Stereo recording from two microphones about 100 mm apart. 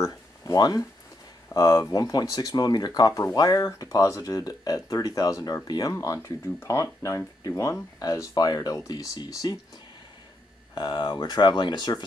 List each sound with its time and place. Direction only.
0.0 s speech: 40° left (ahead or behind)
10.7 s speech: 45° left (ahead or behind)